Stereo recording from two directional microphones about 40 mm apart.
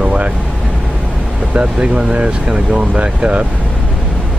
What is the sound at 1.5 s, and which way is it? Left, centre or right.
Speech, right.